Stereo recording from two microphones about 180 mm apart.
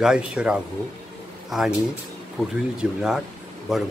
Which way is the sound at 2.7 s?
5° right (ahead or behind).